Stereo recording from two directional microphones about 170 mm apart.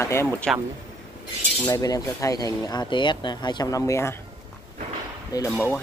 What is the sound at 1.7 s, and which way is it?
Speech, 20° left (ahead or behind).